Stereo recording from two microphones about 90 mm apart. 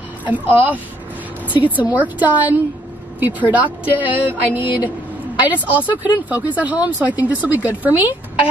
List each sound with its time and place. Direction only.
0.2 s speech: 20° right (ahead or behind)